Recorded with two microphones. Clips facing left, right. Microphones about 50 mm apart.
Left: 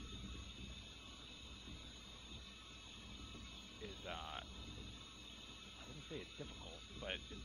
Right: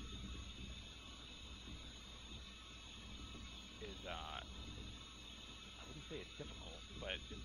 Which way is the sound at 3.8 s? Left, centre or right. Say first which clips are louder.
Even; centre.